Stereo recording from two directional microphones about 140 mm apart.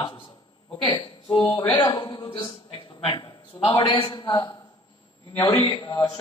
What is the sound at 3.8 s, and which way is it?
A woman's voice, 25° left (ahead or behind).